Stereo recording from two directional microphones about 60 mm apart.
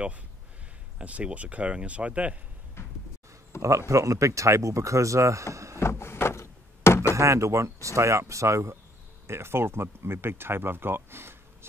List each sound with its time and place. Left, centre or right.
0.9 s speech: right
2.8 s a sound: left
3.6 s speech: right
5.8 s a sound: left
7.2 s speech: right
9.3 s speech: right